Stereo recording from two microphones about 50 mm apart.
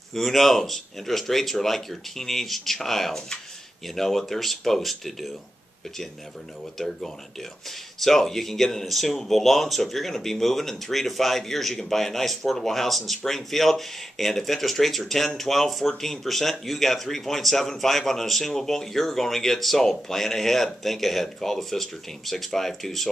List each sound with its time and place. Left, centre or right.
0.1 s speech: centre
8.0 s speech: centre